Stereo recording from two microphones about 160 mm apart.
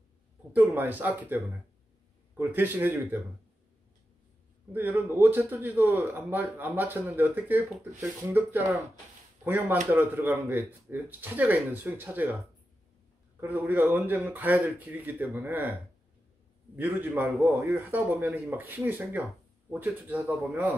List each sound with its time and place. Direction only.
0.6 s a man's voice: 10° right (ahead or behind)
4.7 s a man's voice: 10° right (ahead or behind)
13.4 s a man's voice: 15° right (ahead or behind)
16.7 s a man's voice: 10° right (ahead or behind)